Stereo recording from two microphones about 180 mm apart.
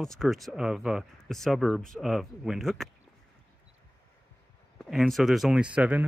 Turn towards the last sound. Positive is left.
turn(degrees=-5)  # may be behind; listen again after turning